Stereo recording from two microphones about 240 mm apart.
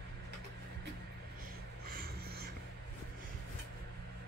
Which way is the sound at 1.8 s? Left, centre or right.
Right.